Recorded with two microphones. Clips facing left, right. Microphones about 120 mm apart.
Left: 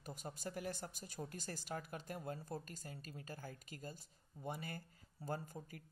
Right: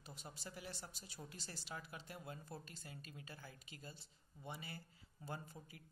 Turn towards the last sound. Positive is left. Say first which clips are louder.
# left 5 dB
turn(degrees=40)  # may be behind; listen again after turning